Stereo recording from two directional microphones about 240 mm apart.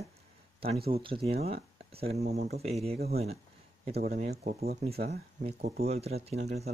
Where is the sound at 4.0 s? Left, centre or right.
Right.